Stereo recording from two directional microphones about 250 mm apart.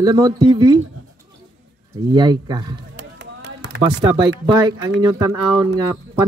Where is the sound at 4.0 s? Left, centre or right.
Centre.